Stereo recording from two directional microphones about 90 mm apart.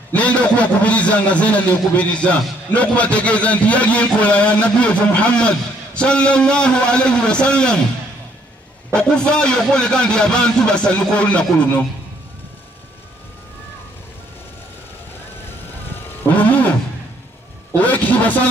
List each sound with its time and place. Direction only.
0.1 s a man's voice: 15° left (ahead or behind)
8.9 s a man's voice: 10° left (ahead or behind)
16.3 s roaring cats: 15° left (ahead or behind)
17.7 s vehicle: 15° left (ahead or behind)